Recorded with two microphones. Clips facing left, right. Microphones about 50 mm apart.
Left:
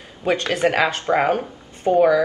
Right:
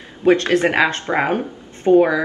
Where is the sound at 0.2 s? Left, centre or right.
Right.